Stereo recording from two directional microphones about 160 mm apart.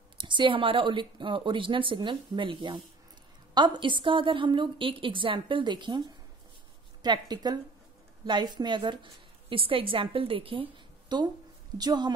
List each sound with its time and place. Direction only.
0.2 s a woman's voice: 30° right (ahead or behind)